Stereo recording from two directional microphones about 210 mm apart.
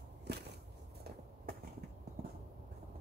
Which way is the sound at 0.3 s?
50° right (ahead or behind).